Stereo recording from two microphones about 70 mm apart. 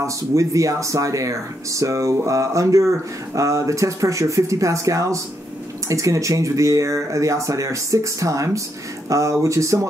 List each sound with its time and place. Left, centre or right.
0.0 s speech: right